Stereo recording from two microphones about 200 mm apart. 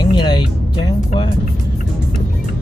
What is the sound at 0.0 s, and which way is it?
Music, 25° left (ahead or behind).